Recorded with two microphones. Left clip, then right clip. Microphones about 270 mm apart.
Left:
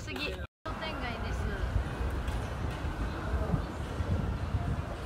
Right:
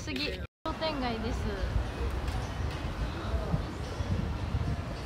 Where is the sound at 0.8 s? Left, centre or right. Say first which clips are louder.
Right 4 dB; centre.